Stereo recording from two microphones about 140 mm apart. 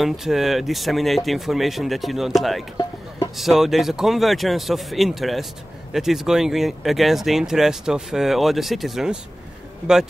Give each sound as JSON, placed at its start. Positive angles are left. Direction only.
{"t": 0.0, "sound": "speech", "side_deg": 0}